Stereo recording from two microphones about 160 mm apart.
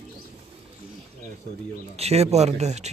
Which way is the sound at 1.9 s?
40° right (ahead or behind).